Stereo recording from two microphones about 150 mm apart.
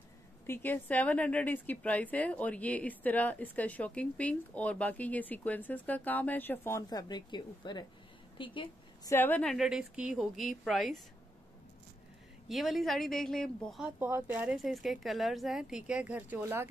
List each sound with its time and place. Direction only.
0.5 s a woman's voice: 10° left (ahead or behind)
6.9 s a woman's voice: 25° left (ahead or behind)
9.1 s a woman's voice: 10° left (ahead or behind)
12.4 s a woman's voice: centre (ahead or behind)
13.9 s speech: 10° right (ahead or behind)